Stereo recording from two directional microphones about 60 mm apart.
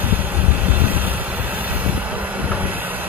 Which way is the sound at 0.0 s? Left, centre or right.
Right.